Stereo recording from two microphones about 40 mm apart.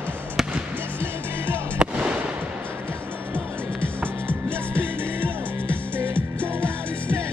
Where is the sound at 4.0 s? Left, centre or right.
Right.